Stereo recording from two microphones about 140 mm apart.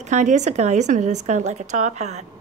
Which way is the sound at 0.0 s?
60° right (ahead or behind).